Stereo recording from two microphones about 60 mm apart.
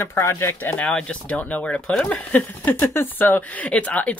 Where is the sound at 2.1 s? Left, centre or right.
Left.